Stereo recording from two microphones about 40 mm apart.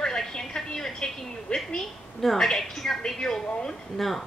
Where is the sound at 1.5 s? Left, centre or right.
Left.